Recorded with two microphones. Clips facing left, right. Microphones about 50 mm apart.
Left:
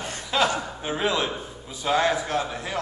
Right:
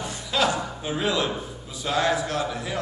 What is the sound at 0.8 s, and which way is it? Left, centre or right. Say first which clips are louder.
A man's voice: left 1 dB; left.